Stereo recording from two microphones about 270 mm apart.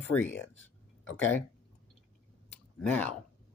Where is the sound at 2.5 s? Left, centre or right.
Centre.